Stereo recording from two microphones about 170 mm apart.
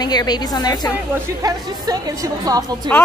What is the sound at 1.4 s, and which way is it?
A woman's voice, 20° right (ahead or behind).